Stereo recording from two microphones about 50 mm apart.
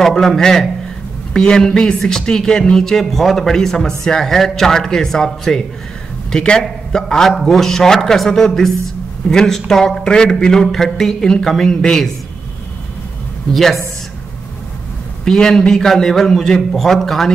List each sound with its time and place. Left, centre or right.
0.0 s a man's voice: centre
13.5 s speech: centre
15.2 s speech: centre